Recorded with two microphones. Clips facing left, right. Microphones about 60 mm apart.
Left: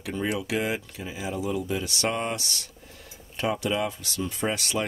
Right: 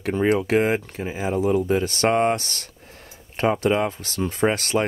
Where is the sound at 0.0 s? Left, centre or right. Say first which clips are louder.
Right 9 dB; right.